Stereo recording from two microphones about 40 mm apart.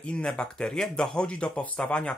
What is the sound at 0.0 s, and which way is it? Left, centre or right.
Speech, left.